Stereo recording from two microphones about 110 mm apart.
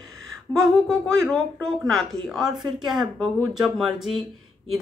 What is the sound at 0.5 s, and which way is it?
A woman's voice, 5° left (ahead or behind).